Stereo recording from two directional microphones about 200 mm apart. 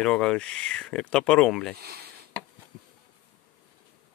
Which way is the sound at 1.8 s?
50° right (ahead or behind).